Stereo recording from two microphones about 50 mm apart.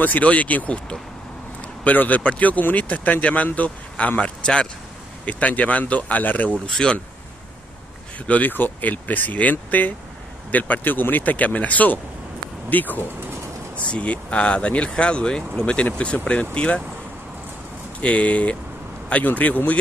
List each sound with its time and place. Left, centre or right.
0.0 s speech: left
1.9 s speech: left
5.2 s speech: left
6.7 s speech: centre
8.3 s speech: left
13.7 s speech: left
18.0 s speech: left